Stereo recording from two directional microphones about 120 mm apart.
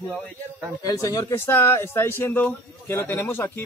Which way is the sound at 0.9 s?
30° left (ahead or behind).